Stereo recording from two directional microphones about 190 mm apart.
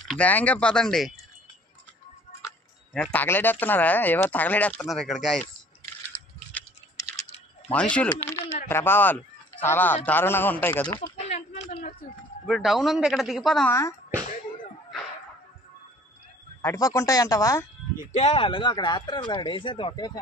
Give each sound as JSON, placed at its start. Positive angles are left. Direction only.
{"t": 0.1, "sound": "speech", "side_deg": 10}
{"t": 2.9, "sound": "speech", "side_deg": 5}
{"t": 7.7, "sound": "speech", "side_deg": 5}
{"t": 11.2, "sound": "a sound", "side_deg": 35}
{"t": 12.4, "sound": "speech", "side_deg": 0}
{"t": 16.6, "sound": "speech", "side_deg": 15}
{"t": 18.1, "sound": "speech", "side_deg": 35}